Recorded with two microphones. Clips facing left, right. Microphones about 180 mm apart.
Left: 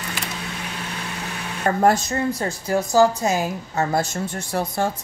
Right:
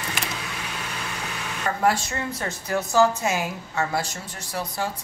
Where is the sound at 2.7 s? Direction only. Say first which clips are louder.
Left 3 dB; 35° left (ahead or behind).